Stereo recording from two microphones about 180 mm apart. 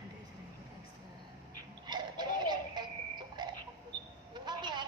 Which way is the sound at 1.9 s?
25° right (ahead or behind).